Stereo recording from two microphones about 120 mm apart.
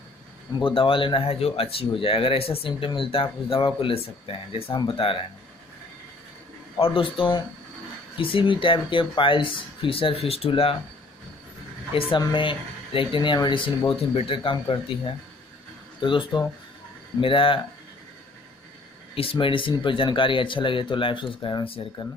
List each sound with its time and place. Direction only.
0.6 s speech: 50° left (ahead or behind)
6.8 s speech: 45° left (ahead or behind)
11.9 s speech: 50° left (ahead or behind)
16.3 s speech: 40° left (ahead or behind)
19.1 s speech: 50° left (ahead or behind)